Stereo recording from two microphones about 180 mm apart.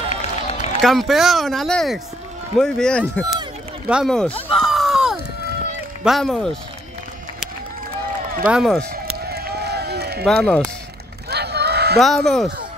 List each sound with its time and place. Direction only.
0.1 s run: 35° left (ahead or behind)
0.8 s speech: centre (ahead or behind)
3.9 s a sound: centre (ahead or behind)
6.0 s speech: centre (ahead or behind)
8.5 s speech: centre (ahead or behind)
8.9 s run: 60° right (ahead or behind)
10.2 s speech: 5° left (ahead or behind)
11.2 s a sound: 65° right (ahead or behind)
12.0 s speech: centre (ahead or behind)